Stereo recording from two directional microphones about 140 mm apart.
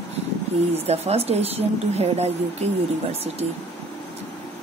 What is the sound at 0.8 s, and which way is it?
Speech, 50° right (ahead or behind).